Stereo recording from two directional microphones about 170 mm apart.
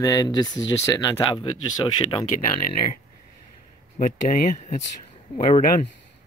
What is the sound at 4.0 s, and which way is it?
Speech, 50° left (ahead or behind).